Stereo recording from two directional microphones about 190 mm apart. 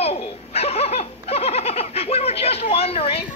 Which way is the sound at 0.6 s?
30° left (ahead or behind).